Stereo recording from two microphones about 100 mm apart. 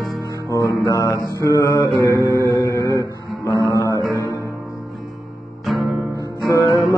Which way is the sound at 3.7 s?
30° left (ahead or behind).